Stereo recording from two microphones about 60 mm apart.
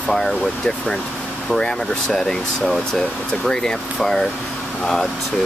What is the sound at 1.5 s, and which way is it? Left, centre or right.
Speech, centre.